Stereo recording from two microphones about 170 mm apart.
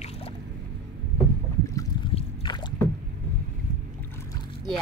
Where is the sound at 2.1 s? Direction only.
30° left (ahead or behind).